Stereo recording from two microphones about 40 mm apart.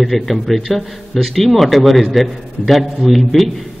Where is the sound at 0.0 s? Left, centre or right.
Centre.